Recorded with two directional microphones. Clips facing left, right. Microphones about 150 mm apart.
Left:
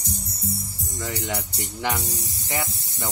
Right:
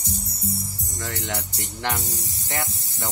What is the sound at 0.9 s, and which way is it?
Speech, centre (ahead or behind).